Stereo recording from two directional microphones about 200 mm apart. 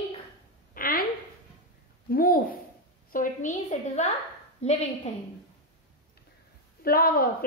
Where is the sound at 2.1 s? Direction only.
45° left (ahead or behind).